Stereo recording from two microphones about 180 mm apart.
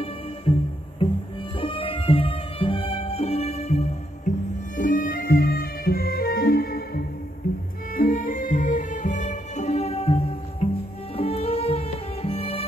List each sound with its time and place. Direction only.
0.0 s music: 30° left (ahead or behind)